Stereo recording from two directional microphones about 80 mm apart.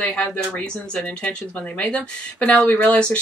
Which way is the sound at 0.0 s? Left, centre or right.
Centre.